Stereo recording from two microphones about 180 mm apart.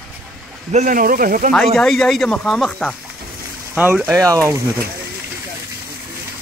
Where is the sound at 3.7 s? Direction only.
10° right (ahead or behind).